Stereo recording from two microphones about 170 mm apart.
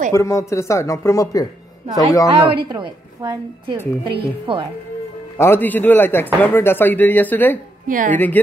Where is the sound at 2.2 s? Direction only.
25° right (ahead or behind).